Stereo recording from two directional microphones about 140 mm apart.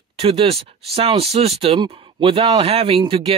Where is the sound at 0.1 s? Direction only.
40° right (ahead or behind).